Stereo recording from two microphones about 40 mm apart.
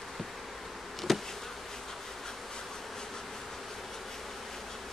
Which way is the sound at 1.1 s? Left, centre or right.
Centre.